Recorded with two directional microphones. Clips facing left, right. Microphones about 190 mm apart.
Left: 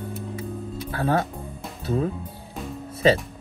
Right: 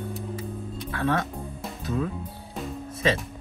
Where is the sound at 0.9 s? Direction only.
30° left (ahead or behind).